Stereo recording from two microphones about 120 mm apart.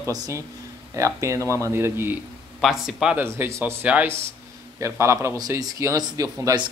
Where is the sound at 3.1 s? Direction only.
20° right (ahead or behind).